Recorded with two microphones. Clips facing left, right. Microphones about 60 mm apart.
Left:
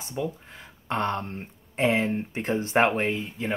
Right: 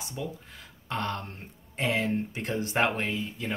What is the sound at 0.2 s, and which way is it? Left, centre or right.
Speech, left.